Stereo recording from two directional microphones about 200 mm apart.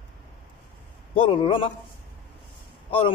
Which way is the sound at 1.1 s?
25° left (ahead or behind).